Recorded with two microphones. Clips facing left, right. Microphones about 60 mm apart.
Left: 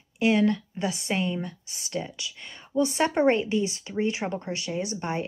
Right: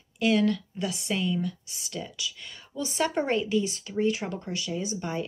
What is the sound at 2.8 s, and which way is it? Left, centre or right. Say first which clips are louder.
Speech: left 5 dB; left.